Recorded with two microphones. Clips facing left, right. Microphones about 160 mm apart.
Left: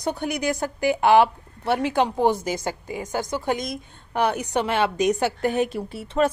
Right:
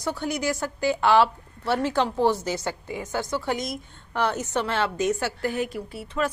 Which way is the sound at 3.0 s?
45° left (ahead or behind).